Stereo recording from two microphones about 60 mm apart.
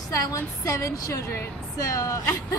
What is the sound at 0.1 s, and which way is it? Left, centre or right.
A woman's voice, left.